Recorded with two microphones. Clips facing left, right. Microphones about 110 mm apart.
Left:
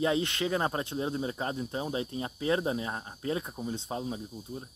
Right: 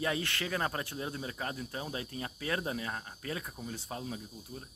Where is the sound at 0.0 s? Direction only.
20° left (ahead or behind).